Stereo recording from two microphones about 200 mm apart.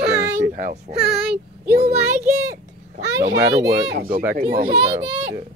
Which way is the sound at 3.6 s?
50° right (ahead or behind).